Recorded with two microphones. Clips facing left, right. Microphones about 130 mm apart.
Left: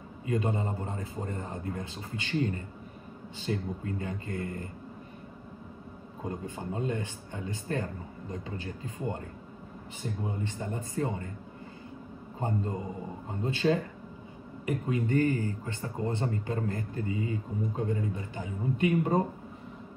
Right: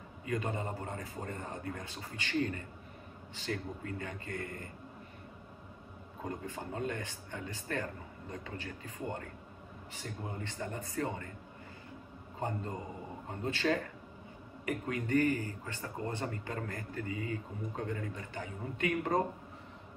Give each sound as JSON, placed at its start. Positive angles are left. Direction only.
{"t": 0.2, "sound": "a man's voice", "side_deg": 25}
{"t": 6.2, "sound": "a man's voice", "side_deg": 20}
{"t": 12.4, "sound": "a man's voice", "side_deg": 20}